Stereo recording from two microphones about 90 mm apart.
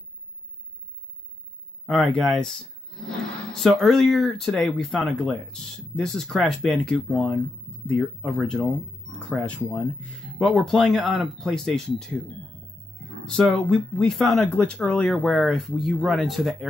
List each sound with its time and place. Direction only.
1.9 s speech: 5° left (ahead or behind)
9.6 s speech: 25° left (ahead or behind)
10.5 s speech: centre (ahead or behind)
13.2 s speech: 5° left (ahead or behind)